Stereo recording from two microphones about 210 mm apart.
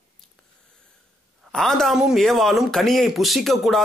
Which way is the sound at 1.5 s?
Centre (ahead or behind).